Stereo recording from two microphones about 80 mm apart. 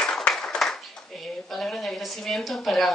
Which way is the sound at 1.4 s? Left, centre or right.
Centre.